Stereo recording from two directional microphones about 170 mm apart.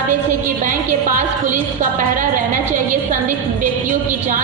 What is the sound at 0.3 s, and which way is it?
A woman's voice, 50° right (ahead or behind).